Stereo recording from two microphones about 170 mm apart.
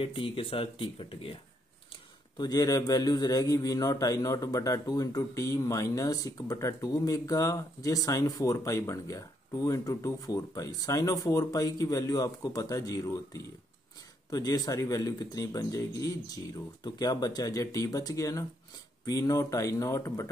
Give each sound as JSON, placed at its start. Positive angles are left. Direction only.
{"t": 0.0, "sound": "a man's voice", "side_deg": 30}